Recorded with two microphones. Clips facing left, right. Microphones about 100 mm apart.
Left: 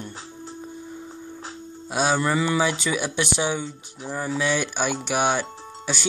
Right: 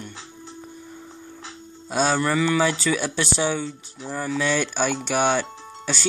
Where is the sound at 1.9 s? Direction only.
10° left (ahead or behind).